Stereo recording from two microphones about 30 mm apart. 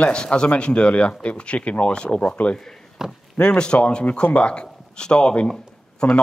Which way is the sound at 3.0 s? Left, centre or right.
Centre.